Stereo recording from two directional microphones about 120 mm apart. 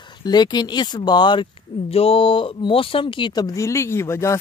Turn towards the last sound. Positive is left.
turn(degrees=25)  # may be behind; listen again after turning